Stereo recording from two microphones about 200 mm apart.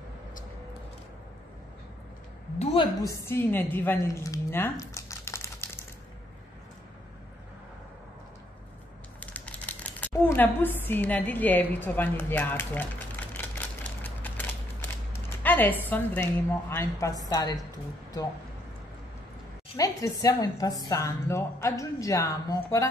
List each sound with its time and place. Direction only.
2.6 s a woman's voice: 25° left (ahead or behind)
9.2 s speech: 5° left (ahead or behind)
14.0 s mechanisms: 10° left (ahead or behind)
19.8 s speech: 15° left (ahead or behind)